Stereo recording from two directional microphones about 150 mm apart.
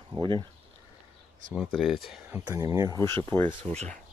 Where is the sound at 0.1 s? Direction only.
30° right (ahead or behind).